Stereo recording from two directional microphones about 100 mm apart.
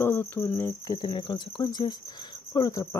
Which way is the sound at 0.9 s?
50° left (ahead or behind).